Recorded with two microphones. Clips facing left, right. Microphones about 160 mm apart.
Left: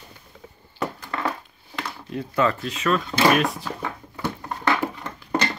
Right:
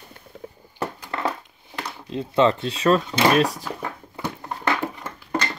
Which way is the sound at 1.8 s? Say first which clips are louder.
Right 1 dB; 20° right (ahead or behind).